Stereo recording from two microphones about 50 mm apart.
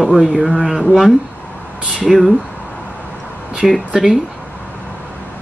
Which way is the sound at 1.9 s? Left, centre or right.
Centre.